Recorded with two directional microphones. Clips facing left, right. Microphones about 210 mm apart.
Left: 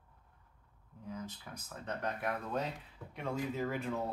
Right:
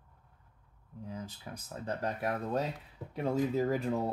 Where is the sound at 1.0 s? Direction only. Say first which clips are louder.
Right 1 dB; 30° right (ahead or behind).